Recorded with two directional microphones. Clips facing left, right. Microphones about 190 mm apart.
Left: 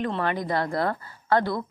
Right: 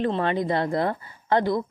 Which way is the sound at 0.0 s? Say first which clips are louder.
Right 3 dB; 25° right (ahead or behind).